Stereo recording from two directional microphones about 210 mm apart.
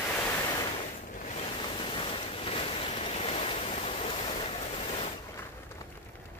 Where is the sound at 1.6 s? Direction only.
25° left (ahead or behind).